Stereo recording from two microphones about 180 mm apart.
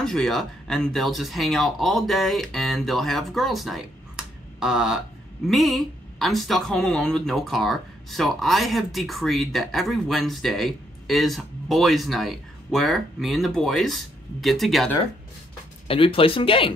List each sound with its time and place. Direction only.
0.0 s speech: centre (ahead or behind)
15.9 s speech: 30° left (ahead or behind)